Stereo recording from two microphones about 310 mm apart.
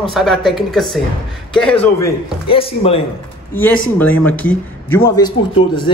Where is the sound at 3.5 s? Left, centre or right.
Centre.